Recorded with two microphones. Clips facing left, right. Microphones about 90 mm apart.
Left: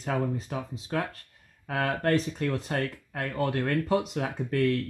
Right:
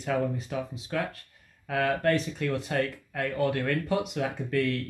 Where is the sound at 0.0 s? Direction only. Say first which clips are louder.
Right 1 dB; 35° left (ahead or behind).